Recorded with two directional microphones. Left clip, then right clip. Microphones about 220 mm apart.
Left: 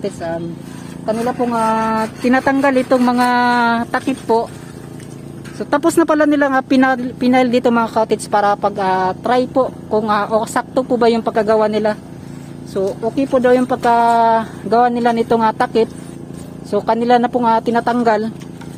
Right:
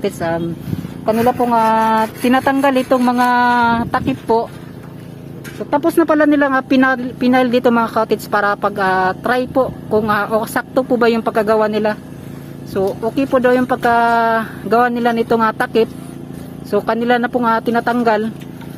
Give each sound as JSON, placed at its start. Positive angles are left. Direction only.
{"t": 0.0, "sound": "speech", "side_deg": -15}
{"t": 1.1, "sound": "a woman's voice", "side_deg": -45}
{"t": 1.7, "sound": "speech", "side_deg": -10}
{"t": 5.7, "sound": "speech", "side_deg": 15}